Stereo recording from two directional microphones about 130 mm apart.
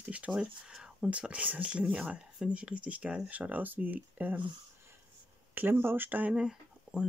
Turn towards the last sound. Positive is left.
turn(degrees=-5)  # may be behind; listen again after turning